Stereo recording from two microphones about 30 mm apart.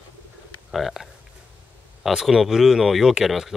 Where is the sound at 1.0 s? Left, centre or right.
Right.